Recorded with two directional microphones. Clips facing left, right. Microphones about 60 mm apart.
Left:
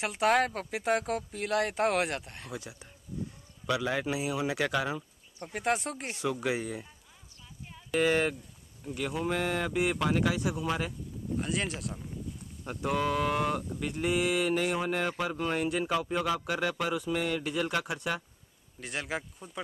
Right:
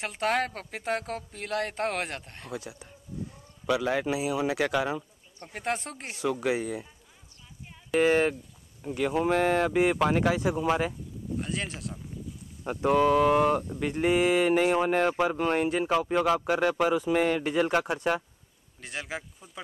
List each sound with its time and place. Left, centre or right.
0.0 s a woman's voice: centre
3.6 s a man's voice: centre
5.5 s a woman's voice: centre
6.3 s speech: right
6.6 s a man's voice: centre
7.6 s a sound: centre
8.0 s speech: right
9.1 s speech: right
9.7 s speech: right
11.3 s a woman's voice: centre
12.6 s speech: right
18.8 s a woman's voice: centre